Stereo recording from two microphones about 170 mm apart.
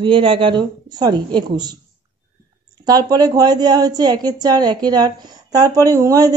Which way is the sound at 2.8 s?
20° right (ahead or behind).